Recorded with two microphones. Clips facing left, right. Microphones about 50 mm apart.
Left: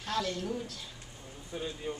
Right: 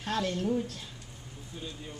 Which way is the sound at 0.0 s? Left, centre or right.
Right.